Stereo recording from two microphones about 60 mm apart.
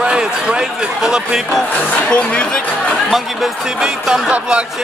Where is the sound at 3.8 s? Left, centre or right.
Centre.